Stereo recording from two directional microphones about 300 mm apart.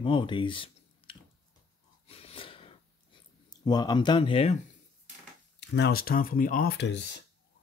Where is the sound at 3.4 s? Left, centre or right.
Centre.